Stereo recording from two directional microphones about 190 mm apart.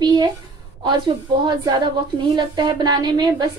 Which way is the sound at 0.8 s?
25° right (ahead or behind).